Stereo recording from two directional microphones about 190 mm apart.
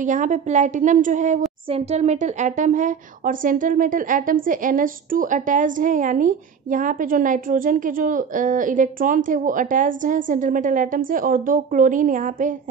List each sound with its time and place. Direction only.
0.0 s a woman's voice: 40° right (ahead or behind)